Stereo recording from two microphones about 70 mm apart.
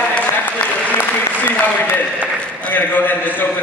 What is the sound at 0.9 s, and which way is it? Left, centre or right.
Applause, left.